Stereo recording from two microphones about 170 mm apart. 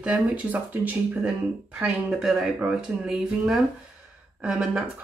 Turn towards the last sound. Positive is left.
turn(degrees=0)  # may be behind; listen again after turning